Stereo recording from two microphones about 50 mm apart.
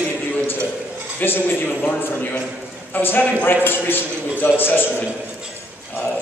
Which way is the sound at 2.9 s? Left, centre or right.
Left.